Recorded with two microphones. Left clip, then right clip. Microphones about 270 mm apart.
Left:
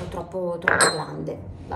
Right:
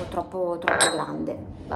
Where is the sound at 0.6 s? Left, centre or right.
Centre.